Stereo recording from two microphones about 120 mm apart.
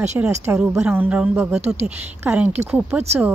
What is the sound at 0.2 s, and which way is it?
A woman's voice, 15° right (ahead or behind).